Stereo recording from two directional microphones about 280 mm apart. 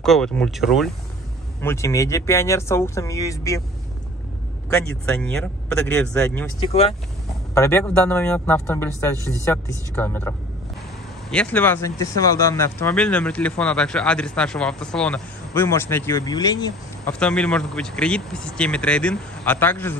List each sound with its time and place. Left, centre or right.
0.0 s speech: centre
1.6 s speech: centre
4.6 s speech: centre
6.6 s speech: left
7.5 s speech: centre
17.1 s speech: centre